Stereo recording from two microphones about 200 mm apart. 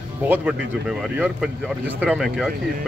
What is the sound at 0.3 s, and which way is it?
Speech, 5° right (ahead or behind).